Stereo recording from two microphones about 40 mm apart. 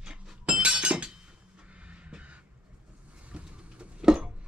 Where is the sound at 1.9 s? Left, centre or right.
Right.